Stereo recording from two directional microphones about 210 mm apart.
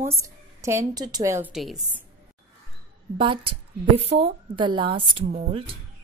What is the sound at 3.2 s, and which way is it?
A woman's voice, 25° right (ahead or behind).